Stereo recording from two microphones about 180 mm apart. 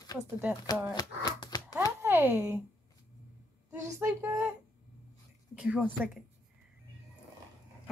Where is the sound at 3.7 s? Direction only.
15° right (ahead or behind).